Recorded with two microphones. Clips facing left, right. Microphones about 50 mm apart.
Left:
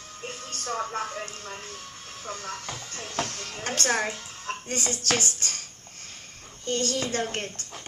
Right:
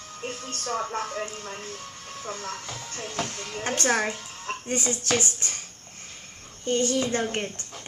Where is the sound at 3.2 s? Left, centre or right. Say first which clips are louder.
Right 3 dB; centre.